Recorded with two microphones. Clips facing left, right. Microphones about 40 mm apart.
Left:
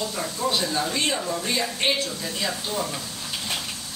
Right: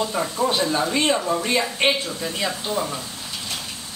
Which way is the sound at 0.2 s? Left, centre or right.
Right.